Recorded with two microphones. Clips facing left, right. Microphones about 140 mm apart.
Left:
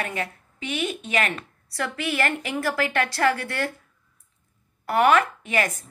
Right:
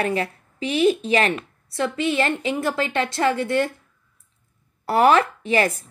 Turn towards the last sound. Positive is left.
turn(degrees=-30)  # may be behind; listen again after turning